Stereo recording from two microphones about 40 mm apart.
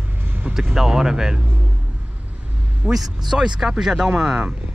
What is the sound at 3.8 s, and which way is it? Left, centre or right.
Speech, centre.